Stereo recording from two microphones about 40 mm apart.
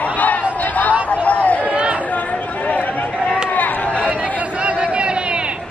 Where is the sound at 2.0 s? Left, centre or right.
Left.